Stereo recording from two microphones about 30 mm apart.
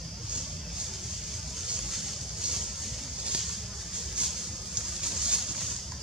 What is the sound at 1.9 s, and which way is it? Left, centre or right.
Vehicle, centre.